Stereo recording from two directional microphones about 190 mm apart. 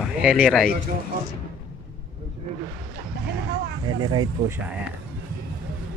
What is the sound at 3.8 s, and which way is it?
Speech, 20° right (ahead or behind).